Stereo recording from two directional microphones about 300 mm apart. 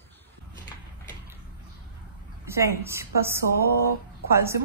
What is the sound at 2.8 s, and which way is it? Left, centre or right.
Speech, centre.